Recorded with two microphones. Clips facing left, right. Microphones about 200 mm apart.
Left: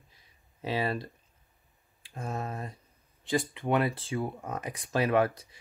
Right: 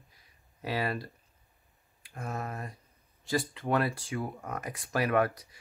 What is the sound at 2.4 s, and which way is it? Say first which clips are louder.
Speech: left 2 dB; 25° left (ahead or behind).